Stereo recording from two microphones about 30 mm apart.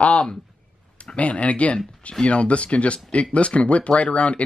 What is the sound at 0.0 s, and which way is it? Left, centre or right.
Speech, left.